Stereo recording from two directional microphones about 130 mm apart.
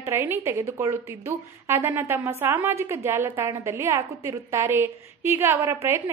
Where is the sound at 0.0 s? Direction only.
20° right (ahead or behind).